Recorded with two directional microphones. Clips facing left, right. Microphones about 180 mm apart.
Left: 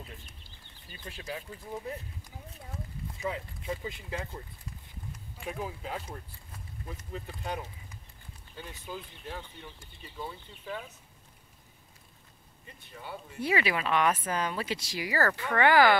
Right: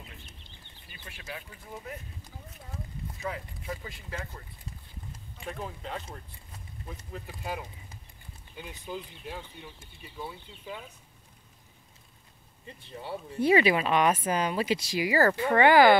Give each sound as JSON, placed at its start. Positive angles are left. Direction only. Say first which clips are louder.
{"t": 0.8, "sound": "speech", "louder": "left 4 dB", "side_deg": 35}
{"t": 3.2, "sound": "speech", "louder": "left 2 dB", "side_deg": 20}
{"t": 5.4, "sound": "speech", "louder": "left 1 dB", "side_deg": 5}
{"t": 8.5, "sound": "speech", "louder": "right 3 dB", "side_deg": -15}
{"t": 12.6, "sound": "speech", "louder": "right 5 dB", "side_deg": -25}